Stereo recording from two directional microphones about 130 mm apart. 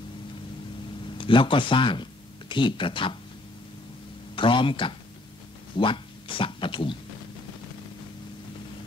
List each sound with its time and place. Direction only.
1.1 s speech: 40° left (ahead or behind)
4.4 s speech: 40° left (ahead or behind)